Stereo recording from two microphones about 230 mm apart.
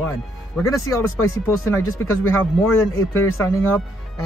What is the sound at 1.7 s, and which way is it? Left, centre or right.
Speech, centre.